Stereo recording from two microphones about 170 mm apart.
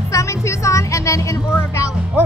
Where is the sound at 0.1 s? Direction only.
20° left (ahead or behind).